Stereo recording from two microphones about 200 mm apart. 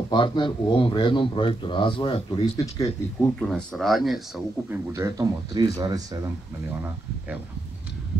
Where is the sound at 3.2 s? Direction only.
5° left (ahead or behind); by 6.2 s 20° right (ahead or behind).